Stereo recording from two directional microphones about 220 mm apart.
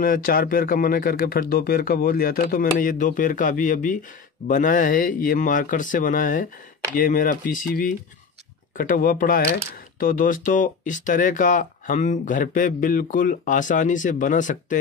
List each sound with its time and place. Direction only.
0.0 s speech: 40° left (ahead or behind)